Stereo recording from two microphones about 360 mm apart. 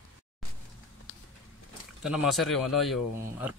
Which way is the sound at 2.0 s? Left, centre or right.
Centre.